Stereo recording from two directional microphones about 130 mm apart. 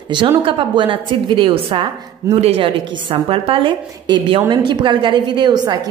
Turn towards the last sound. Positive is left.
turn(degrees=-35)  # may be behind; listen again after turning